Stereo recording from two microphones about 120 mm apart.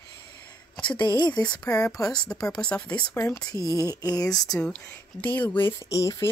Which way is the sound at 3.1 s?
25° left (ahead or behind).